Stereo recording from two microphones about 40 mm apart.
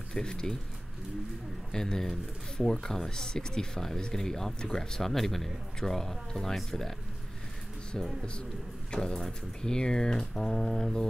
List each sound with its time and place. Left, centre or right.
0.1 s speech: centre
1.7 s speech: centre
8.9 s speech: left